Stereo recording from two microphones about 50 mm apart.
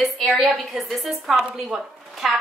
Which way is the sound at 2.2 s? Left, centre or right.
Centre.